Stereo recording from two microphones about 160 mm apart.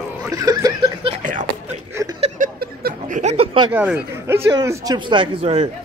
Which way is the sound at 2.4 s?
70° right (ahead or behind).